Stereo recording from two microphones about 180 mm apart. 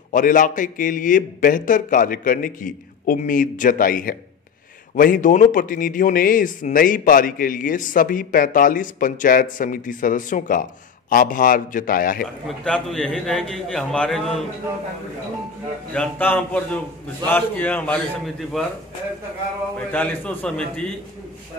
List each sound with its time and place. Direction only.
0.1 s speech: 50° left (ahead or behind)
12.4 s a man's voice: 5° left (ahead or behind)
15.9 s a man's voice: 10° left (ahead or behind)
19.9 s a man's voice: 10° left (ahead or behind)